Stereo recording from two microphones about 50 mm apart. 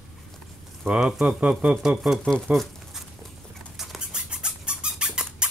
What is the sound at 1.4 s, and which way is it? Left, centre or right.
Speech, right.